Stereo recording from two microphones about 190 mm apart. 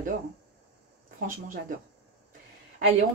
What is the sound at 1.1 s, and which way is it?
Speech, 50° right (ahead or behind).